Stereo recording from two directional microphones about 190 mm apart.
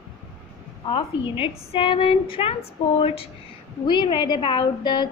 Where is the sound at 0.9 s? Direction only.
25° left (ahead or behind).